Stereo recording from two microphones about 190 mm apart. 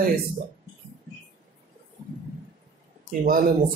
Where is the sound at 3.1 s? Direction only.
50° right (ahead or behind).